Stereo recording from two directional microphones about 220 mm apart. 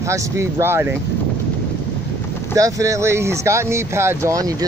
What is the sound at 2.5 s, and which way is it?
Speech, 15° right (ahead or behind).